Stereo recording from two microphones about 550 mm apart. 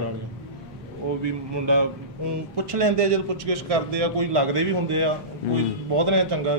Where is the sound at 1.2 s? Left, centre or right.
Right.